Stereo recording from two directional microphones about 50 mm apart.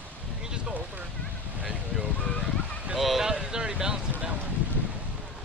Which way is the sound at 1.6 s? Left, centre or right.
Right.